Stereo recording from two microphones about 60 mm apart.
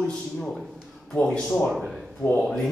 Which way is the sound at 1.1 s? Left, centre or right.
Left.